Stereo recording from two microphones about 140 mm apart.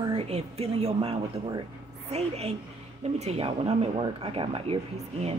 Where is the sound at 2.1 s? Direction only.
50° right (ahead or behind).